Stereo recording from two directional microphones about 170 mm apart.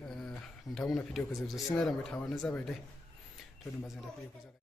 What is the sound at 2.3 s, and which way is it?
Speech, 15° left (ahead or behind).